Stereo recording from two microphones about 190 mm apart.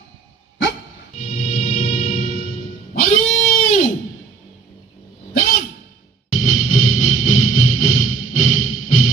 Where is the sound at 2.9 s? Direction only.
35° left (ahead or behind).